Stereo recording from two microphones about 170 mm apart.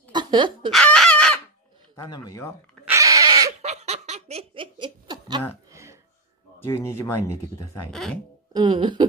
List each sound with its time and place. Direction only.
0.1 s chicken: 25° right (ahead or behind)
0.7 s chicken: 5° left (ahead or behind)
2.0 s speech: 20° left (ahead or behind)
2.9 s a sound: 20° right (ahead or behind)
3.6 s snicker: 40° right (ahead or behind)
5.7 s a sound: 15° right (ahead or behind)
6.7 s speech: 15° left (ahead or behind)
7.9 s speech: centre (ahead or behind)
8.5 s speech: 30° right (ahead or behind)